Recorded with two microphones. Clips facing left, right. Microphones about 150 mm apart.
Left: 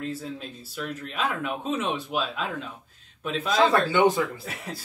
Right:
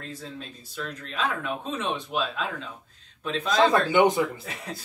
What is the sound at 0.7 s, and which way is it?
Speech, 5° left (ahead or behind).